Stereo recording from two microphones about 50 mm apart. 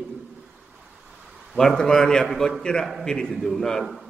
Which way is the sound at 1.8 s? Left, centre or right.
Centre.